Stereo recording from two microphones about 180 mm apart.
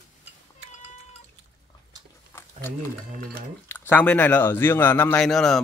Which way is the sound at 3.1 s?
55° right (ahead or behind).